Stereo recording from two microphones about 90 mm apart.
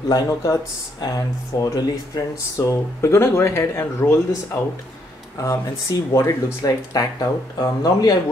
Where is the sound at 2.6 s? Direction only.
30° left (ahead or behind).